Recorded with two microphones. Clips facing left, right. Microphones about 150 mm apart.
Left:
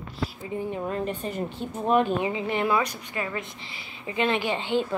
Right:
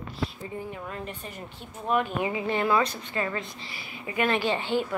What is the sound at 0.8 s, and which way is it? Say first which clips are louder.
A woman's voice: left 8 dB; 30° left (ahead or behind).